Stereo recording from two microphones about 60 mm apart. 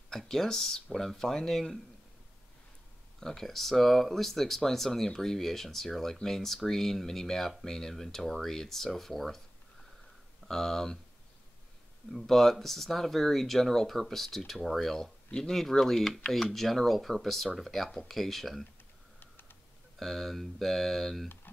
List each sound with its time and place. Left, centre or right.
0.1 s speech: centre
3.2 s speech: centre
10.5 s speech: centre
12.1 s speech: centre
19.1 s typing: left
20.0 s speech: centre